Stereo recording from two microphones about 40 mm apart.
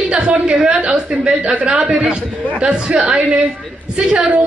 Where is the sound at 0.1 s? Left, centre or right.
Right.